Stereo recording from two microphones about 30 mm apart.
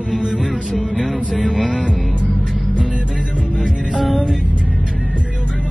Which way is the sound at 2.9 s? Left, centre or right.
Right.